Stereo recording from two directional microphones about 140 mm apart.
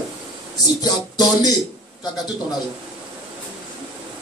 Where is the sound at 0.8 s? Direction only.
30° left (ahead or behind).